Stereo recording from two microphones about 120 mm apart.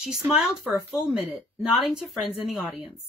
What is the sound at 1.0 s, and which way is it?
A woman's voice, 5° right (ahead or behind).